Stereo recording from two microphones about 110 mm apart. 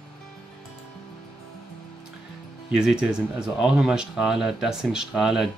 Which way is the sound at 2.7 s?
5° right (ahead or behind).